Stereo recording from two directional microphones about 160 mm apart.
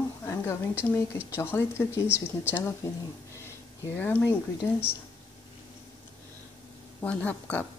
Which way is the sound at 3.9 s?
10° left (ahead or behind).